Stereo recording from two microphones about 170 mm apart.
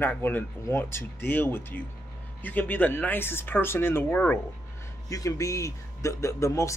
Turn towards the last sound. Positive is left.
turn(degrees=15)  # may be behind; listen again after turning